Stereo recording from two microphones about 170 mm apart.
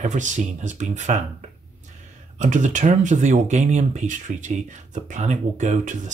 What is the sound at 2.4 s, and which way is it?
Speech, 45° right (ahead or behind).